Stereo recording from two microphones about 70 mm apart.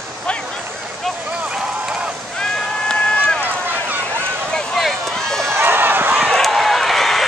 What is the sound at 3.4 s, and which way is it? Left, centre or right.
Run, right.